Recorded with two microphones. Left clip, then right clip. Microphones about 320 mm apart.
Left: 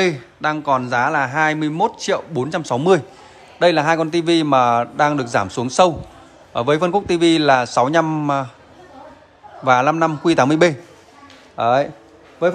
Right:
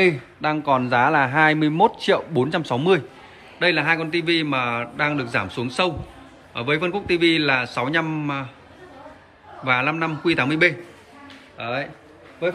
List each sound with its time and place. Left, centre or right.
0.0 s a man's voice: centre
9.7 s a man's voice: centre